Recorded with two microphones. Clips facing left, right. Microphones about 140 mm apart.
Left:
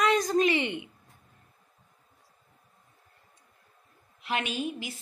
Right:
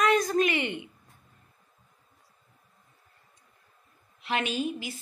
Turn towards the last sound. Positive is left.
turn(degrees=5)  # may be behind; listen again after turning